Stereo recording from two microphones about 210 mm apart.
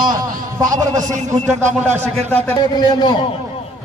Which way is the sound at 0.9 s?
35° right (ahead or behind).